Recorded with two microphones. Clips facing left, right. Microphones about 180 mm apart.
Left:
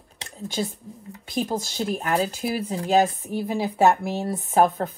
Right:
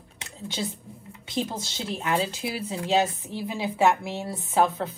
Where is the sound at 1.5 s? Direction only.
40° left (ahead or behind).